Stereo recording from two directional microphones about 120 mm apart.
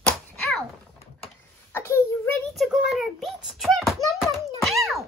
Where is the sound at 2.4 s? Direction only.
Centre (ahead or behind).